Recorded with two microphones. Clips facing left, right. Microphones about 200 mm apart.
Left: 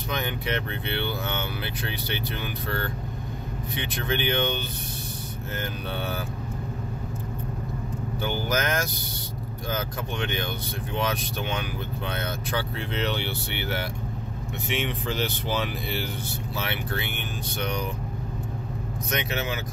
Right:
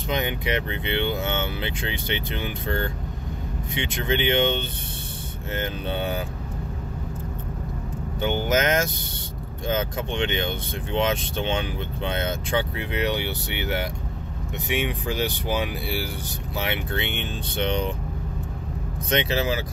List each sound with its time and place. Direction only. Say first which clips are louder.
0.1 s speech: right 4 dB; 15° right (ahead or behind)
8.2 s speech: right 5 dB; 20° right (ahead or behind)
19.0 s speech: right 6 dB; 30° right (ahead or behind)